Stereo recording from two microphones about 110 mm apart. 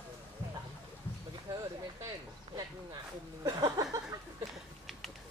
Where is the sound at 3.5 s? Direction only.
35° right (ahead or behind).